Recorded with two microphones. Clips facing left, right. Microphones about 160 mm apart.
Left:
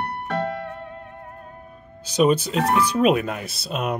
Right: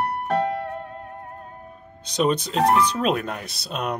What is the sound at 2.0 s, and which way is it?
Speech, 5° left (ahead or behind).